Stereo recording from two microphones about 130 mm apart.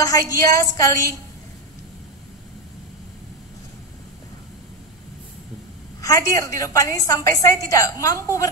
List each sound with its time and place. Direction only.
0.0 s a woman's voice: 25° left (ahead or behind)
5.9 s a woman's voice: 25° left (ahead or behind)